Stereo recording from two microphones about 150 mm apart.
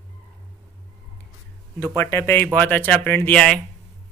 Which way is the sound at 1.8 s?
15° left (ahead or behind).